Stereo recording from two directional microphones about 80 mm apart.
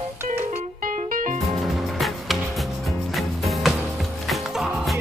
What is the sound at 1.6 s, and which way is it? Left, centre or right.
Music, centre.